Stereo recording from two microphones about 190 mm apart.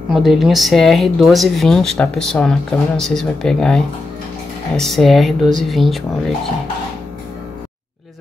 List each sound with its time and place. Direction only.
0.1 s speech: centre (ahead or behind)